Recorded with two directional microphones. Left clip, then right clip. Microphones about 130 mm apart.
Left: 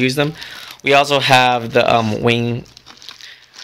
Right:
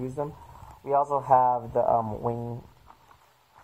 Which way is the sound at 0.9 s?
35° left (ahead or behind).